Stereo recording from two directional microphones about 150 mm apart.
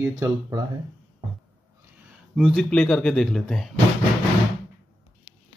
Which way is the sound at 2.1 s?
5° right (ahead or behind).